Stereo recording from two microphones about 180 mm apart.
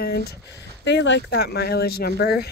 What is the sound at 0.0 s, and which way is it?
Speech, 60° left (ahead or behind).